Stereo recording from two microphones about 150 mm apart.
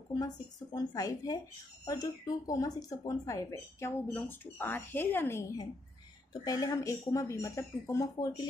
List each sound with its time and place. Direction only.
0.7 s speech: 25° left (ahead or behind)